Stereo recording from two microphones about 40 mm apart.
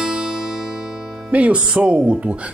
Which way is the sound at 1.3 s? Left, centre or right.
Right.